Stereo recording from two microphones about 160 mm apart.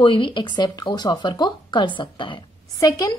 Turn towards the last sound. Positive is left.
turn(degrees=30)  # may be behind; listen again after turning